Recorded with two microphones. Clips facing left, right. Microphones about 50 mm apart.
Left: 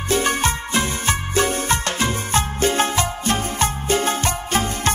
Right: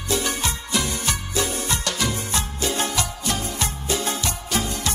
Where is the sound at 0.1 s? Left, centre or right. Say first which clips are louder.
Left 5 dB; left.